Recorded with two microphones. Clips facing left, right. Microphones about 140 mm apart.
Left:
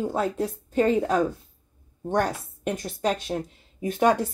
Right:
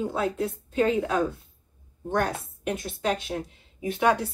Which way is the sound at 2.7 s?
40° left (ahead or behind).